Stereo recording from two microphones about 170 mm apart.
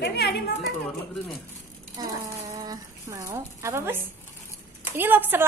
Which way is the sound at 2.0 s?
25° right (ahead or behind).